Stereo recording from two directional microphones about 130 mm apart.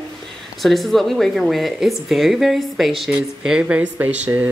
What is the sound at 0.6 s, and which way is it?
Speech, centre (ahead or behind).